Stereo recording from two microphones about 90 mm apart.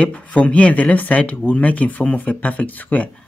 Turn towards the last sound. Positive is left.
turn(degrees=15)  # may be behind; listen again after turning